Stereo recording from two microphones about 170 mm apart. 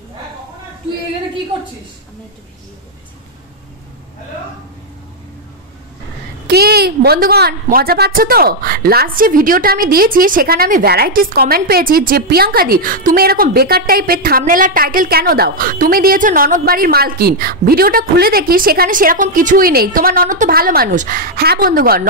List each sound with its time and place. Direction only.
6.4 s a woman's voice: 70° right (ahead or behind)